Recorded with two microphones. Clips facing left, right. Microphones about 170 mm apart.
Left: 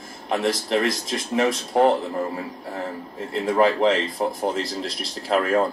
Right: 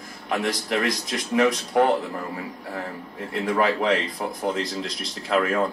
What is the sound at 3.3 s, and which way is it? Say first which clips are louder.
Speech: left 3 dB; 30° left (ahead or behind).